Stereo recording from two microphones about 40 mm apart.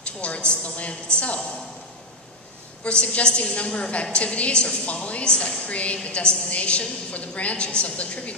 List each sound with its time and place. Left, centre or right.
0.0 s a woman's voice: left
2.8 s a woman's voice: left